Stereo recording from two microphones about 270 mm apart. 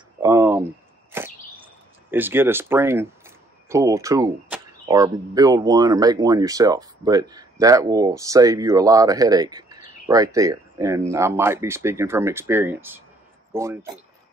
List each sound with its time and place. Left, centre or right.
0.2 s a sound: centre
1.1 s whip: centre
2.0 s speech: centre